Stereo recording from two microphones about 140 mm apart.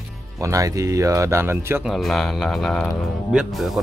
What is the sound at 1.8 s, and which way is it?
Speech, centre (ahead or behind).